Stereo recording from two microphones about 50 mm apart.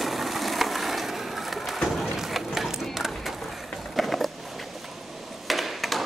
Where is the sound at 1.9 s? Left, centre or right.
Centre.